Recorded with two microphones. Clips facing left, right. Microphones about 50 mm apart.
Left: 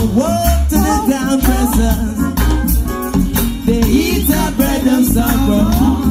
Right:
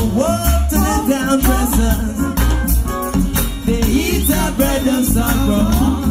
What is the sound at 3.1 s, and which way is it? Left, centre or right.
Music, right.